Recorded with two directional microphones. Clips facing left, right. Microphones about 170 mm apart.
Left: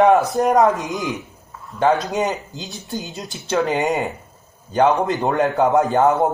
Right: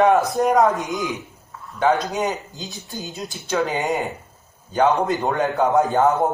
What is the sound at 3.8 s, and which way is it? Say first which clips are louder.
Speech: left 2 dB; centre (ahead or behind).